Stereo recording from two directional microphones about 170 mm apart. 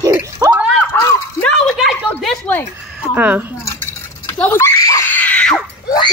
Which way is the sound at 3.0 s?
10° right (ahead or behind).